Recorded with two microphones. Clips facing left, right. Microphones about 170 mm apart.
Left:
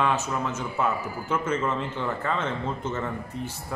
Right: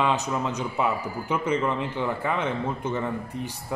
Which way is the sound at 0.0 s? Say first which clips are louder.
Right 1 dB; 15° right (ahead or behind).